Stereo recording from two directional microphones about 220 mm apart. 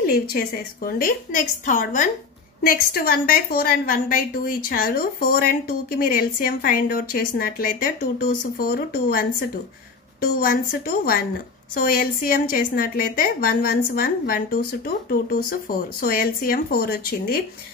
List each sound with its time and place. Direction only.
0.0 s a woman's voice: 45° left (ahead or behind)